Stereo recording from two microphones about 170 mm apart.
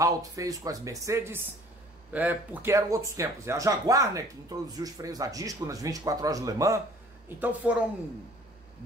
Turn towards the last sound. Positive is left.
turn(degrees=-10)  # may be behind; listen again after turning